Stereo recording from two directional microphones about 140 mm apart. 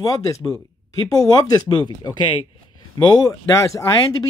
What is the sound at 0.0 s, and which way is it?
Speech, 25° left (ahead or behind).